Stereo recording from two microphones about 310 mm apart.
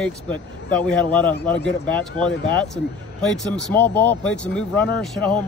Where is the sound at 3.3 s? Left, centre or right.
Centre.